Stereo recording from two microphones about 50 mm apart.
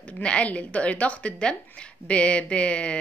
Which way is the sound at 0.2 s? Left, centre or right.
Left.